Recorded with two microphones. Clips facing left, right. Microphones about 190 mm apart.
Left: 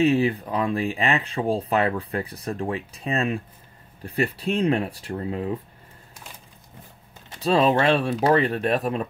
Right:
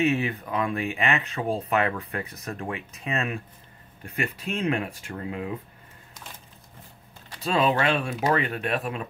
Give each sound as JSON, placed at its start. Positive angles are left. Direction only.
{"t": 0.0, "sound": "speech", "side_deg": 30}
{"t": 7.4, "sound": "speech", "side_deg": 35}